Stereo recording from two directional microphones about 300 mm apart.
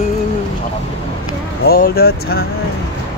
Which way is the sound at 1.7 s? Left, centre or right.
Left.